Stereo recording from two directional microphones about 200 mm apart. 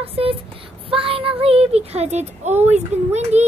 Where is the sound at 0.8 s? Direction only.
25° right (ahead or behind).